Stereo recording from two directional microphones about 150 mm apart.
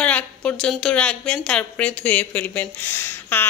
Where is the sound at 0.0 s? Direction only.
10° left (ahead or behind).